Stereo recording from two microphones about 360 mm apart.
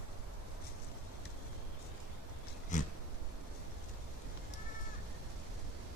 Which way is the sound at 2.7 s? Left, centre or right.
Centre.